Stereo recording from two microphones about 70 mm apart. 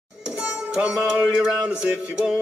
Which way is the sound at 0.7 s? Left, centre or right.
Centre.